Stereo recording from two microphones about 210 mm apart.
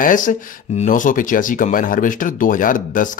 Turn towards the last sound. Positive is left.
turn(degrees=40)  # may be behind; listen again after turning